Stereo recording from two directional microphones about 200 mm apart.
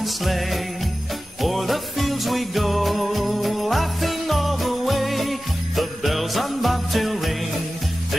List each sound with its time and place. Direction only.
0.0 s jingle bell: centre (ahead or behind)
1.4 s music: centre (ahead or behind)